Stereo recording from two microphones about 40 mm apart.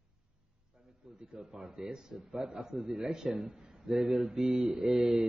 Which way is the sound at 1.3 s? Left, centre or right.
Centre.